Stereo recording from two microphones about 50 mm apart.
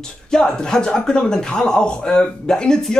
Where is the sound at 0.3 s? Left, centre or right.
Centre.